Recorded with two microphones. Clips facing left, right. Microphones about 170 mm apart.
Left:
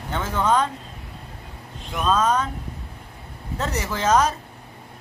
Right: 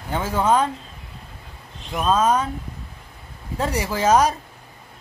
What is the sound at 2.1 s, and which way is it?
Speech, 10° right (ahead or behind).